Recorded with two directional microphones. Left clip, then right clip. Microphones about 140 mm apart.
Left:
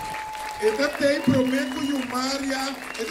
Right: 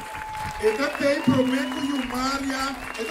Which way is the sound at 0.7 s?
50° right (ahead or behind).